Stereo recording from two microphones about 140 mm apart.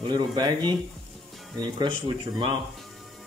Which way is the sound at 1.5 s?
30° right (ahead or behind).